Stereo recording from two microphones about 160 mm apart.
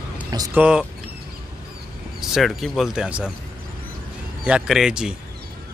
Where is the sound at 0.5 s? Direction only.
5° right (ahead or behind).